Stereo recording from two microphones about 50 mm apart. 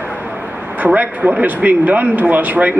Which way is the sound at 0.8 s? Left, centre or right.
Right.